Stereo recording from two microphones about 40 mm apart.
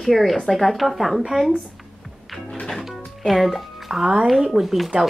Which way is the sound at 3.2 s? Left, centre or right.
Centre.